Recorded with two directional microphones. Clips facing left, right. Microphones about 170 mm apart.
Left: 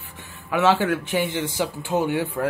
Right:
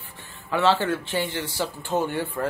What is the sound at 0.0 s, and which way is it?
A man's voice, 15° left (ahead or behind).